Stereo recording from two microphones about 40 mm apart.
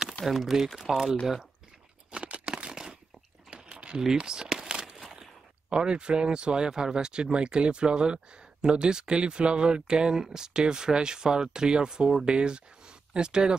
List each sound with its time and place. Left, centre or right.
0.2 s speech: centre
2.0 s crumpling: right
2.5 s crumpling: centre
3.4 s a sound: centre
3.7 s typing: right
4.2 s a sound: centre
5.7 s speech: right